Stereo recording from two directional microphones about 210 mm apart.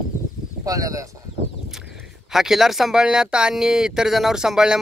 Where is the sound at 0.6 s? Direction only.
15° right (ahead or behind).